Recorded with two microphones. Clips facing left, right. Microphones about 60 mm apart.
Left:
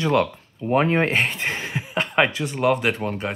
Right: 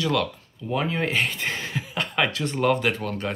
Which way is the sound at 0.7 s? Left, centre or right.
Left.